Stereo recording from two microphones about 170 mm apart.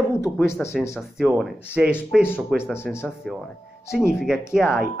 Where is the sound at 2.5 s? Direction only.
Centre (ahead or behind).